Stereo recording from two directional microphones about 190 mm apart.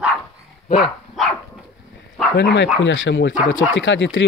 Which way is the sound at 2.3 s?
70° left (ahead or behind).